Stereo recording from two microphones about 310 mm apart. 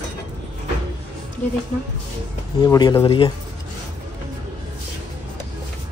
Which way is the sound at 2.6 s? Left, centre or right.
Centre.